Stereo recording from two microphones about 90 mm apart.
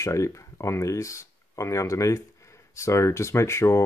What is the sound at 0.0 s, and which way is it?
Speech, 35° left (ahead or behind).